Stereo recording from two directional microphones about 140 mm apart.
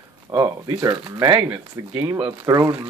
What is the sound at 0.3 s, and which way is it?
Speech, 25° right (ahead or behind).